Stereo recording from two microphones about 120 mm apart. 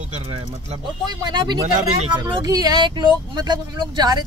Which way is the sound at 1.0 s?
35° right (ahead or behind).